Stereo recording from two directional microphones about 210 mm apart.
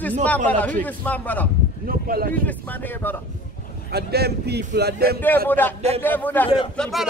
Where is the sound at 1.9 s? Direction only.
45° right (ahead or behind).